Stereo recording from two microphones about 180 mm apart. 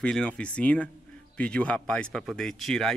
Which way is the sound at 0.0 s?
5° left (ahead or behind).